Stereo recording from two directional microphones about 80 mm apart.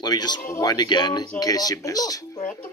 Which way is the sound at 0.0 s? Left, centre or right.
Left.